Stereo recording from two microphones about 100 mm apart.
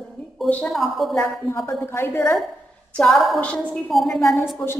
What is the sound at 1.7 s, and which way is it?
Speech, 25° left (ahead or behind).